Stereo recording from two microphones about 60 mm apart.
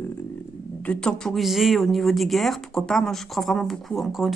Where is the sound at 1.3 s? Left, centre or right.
Centre.